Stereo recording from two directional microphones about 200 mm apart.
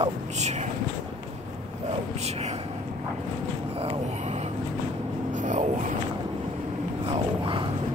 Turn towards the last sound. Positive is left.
turn(degrees=-25)  # may be behind; listen again after turning